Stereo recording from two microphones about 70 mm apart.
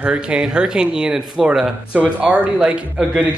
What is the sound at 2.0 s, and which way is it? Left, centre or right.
Speech, right.